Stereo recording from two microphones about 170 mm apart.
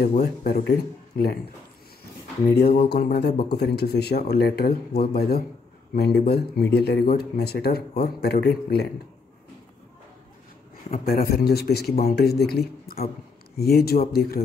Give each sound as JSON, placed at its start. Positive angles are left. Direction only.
{"t": 0.2, "sound": "speech", "side_deg": 70}
{"t": 2.8, "sound": "speech", "side_deg": 70}
{"t": 10.9, "sound": "speech", "side_deg": 65}